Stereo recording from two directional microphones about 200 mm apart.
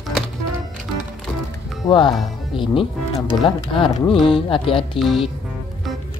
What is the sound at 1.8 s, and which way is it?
Speech, 20° left (ahead or behind).